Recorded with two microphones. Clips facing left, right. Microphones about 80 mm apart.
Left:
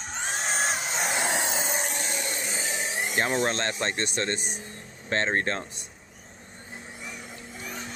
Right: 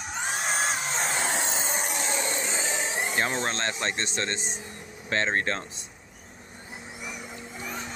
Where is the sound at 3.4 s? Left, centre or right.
Right.